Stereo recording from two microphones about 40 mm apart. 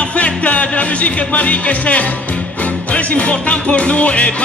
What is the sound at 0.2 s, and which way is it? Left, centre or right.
Music, left.